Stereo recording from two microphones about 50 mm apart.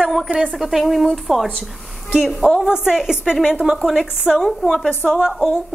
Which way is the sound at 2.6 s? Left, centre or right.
Centre.